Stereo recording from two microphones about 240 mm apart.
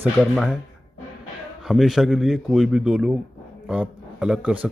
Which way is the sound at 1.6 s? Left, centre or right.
Centre.